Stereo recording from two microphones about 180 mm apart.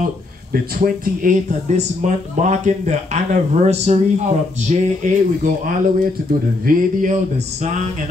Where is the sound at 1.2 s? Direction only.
45° right (ahead or behind).